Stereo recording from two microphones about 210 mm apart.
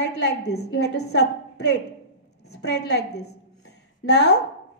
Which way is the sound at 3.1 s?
90° left.